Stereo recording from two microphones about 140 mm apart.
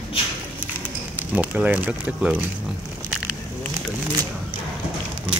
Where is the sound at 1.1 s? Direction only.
10° right (ahead or behind).